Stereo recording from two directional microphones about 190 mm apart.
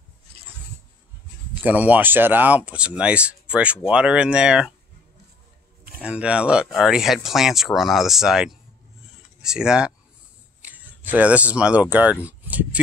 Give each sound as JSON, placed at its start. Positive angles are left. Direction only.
{"t": 0.3, "sound": "a sound", "side_deg": -30}
{"t": 1.6, "sound": "speech", "side_deg": -10}
{"t": 5.9, "sound": "speech", "side_deg": -5}